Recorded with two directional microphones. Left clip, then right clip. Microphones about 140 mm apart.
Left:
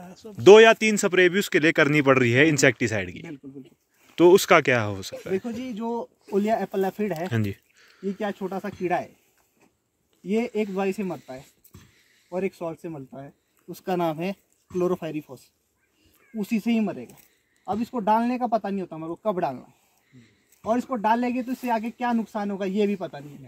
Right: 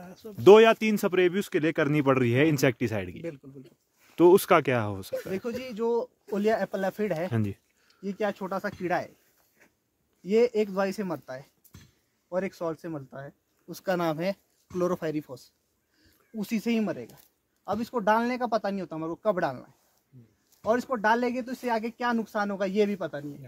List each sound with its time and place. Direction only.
0.0 s speech: 10° right (ahead or behind)
5.4 s speech: 30° right (ahead or behind)
7.2 s speech: 5° right (ahead or behind)
8.2 s speech: 30° right (ahead or behind)
10.2 s speech: 30° right (ahead or behind)
20.1 s a sound: 10° right (ahead or behind)
20.6 s speech: 30° right (ahead or behind)